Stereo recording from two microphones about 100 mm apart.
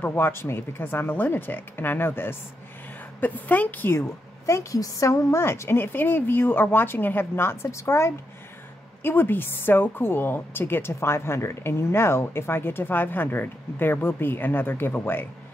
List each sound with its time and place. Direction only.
0.0 s a woman's voice: 20° left (ahead or behind)
4.5 s a woman's voice: 30° left (ahead or behind)